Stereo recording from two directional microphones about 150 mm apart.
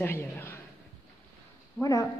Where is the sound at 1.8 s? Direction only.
20° left (ahead or behind).